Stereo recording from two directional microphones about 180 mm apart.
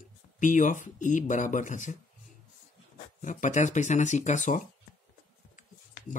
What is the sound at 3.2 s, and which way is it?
Speech, 45° left (ahead or behind).